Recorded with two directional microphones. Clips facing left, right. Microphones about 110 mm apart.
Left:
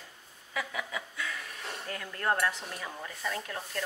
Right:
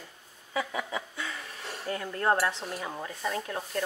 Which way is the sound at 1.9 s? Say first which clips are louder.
Right 5 dB; 25° right (ahead or behind).